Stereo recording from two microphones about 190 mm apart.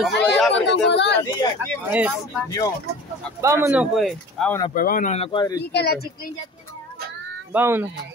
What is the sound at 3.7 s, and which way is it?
Speech, centre (ahead or behind).